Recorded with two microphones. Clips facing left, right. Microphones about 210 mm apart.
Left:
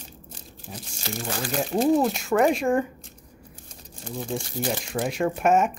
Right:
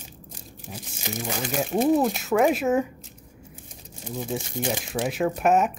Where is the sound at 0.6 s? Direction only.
10° right (ahead or behind).